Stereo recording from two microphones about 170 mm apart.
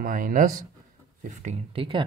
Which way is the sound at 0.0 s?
55° right (ahead or behind).